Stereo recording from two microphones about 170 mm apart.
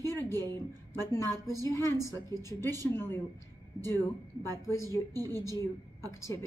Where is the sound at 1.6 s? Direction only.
15° left (ahead or behind).